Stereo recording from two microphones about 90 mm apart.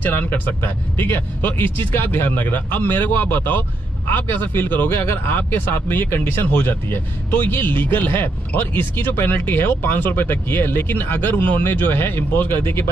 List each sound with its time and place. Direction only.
0.0 s speech: 20° left (ahead or behind)